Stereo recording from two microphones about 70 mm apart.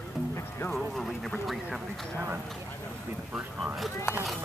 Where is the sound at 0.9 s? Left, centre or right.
Centre.